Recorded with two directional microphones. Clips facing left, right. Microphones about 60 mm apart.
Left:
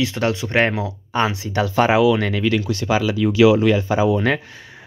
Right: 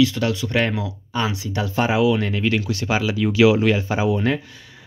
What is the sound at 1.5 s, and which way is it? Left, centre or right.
Speech, left.